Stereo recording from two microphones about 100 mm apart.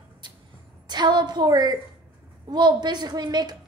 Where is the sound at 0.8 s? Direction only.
45° right (ahead or behind).